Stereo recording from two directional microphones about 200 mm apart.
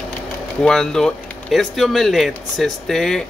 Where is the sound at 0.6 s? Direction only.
5° left (ahead or behind).